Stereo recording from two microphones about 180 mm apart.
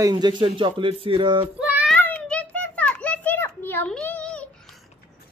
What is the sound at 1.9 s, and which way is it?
Children playing, 5° left (ahead or behind).